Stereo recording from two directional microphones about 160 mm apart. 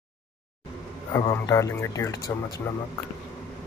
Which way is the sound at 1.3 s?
20° left (ahead or behind).